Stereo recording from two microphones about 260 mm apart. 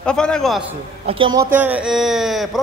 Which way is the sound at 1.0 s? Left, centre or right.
Centre.